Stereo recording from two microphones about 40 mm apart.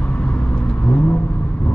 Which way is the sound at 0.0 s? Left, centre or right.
Left.